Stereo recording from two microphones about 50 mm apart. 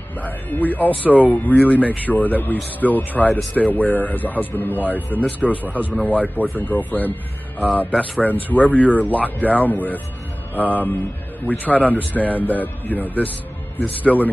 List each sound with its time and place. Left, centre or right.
0.2 s speech: left
5.6 s speech: right
6.0 s speech: left